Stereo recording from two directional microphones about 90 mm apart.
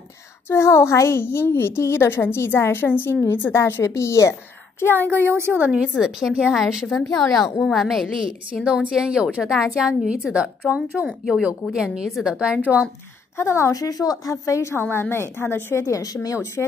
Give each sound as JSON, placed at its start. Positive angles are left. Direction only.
{"t": 0.5, "sound": "a woman's voice", "side_deg": 30}
{"t": 5.2, "sound": "a woman's voice", "side_deg": -25}
{"t": 5.7, "sound": "a woman's voice", "side_deg": -5}
{"t": 13.4, "sound": "a woman's voice", "side_deg": 30}